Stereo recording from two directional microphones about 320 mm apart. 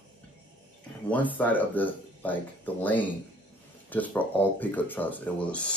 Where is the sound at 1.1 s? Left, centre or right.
Centre.